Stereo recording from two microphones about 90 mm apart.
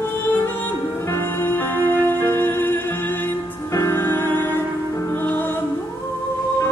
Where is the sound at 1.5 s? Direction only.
25° left (ahead or behind).